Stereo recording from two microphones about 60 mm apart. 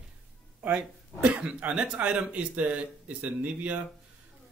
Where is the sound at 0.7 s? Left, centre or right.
Centre.